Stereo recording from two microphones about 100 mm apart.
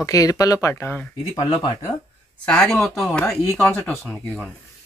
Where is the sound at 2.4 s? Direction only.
10° left (ahead or behind).